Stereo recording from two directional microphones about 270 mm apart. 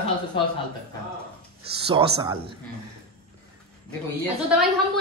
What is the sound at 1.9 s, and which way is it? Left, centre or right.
Speech, centre.